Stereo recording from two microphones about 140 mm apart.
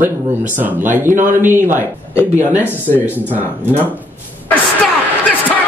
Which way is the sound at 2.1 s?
20° left (ahead or behind).